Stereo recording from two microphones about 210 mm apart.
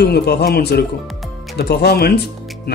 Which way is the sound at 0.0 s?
50° left (ahead or behind).